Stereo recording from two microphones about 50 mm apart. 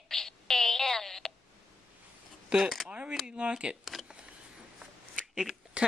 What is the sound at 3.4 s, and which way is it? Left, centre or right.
Speech, centre.